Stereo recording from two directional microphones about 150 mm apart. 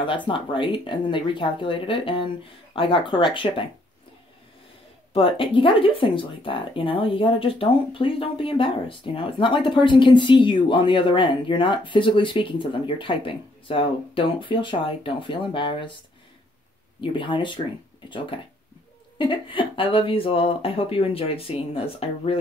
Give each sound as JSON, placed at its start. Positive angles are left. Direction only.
{"t": 0.3, "sound": "speech", "side_deg": 35}
{"t": 5.1, "sound": "speech", "side_deg": 35}
{"t": 17.0, "sound": "speech", "side_deg": 35}
{"t": 19.1, "sound": "speech", "side_deg": 35}